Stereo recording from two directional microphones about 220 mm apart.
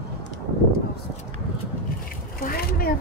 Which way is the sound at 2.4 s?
40° left (ahead or behind).